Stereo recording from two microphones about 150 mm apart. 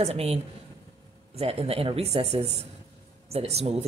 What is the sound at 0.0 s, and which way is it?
A woman's voice, 45° right (ahead or behind).